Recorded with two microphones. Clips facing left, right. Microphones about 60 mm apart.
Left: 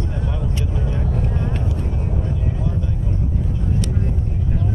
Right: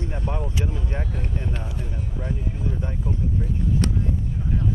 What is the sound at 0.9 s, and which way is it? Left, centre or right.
Vehicle, right.